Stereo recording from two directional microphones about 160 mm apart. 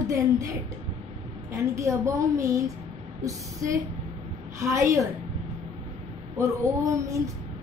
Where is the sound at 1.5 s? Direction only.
20° right (ahead or behind).